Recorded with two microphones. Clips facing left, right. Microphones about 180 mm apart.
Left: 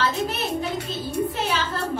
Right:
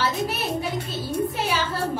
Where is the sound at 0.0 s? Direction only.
10° right (ahead or behind).